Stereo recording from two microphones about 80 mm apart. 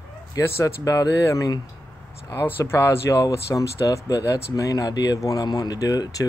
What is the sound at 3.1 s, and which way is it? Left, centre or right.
Speech, left.